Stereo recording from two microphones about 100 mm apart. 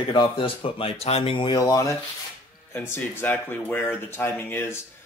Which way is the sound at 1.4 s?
45° left (ahead or behind).